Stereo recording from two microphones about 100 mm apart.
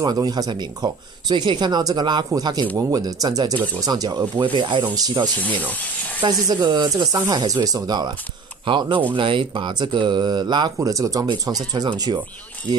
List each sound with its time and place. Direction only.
0.0 s speech: 40° right (ahead or behind)
4.9 s speech: 40° right (ahead or behind)
8.6 s speech: 55° right (ahead or behind)
10.8 s speech: 35° right (ahead or behind)